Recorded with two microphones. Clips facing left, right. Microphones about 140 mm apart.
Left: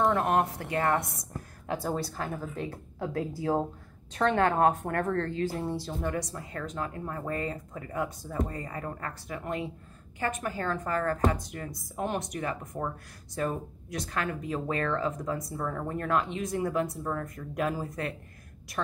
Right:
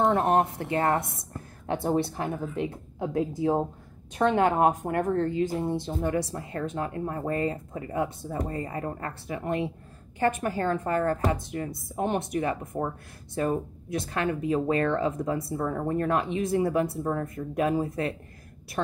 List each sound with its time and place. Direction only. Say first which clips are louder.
0.6 s a woman's voice: right 2 dB; 25° right (ahead or behind)
1.0 s speech: even; centre (ahead or behind)
1.7 s a woman's voice: right 5 dB; 25° right (ahead or behind)